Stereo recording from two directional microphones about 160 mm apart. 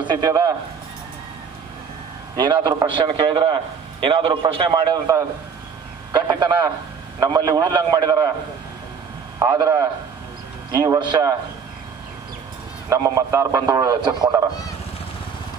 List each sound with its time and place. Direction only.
0.0 s a man's voice: 25° right (ahead or behind)
2.3 s a man's voice: 30° right (ahead or behind)
9.4 s a man's voice: 20° right (ahead or behind)
12.9 s a man's voice: 20° right (ahead or behind)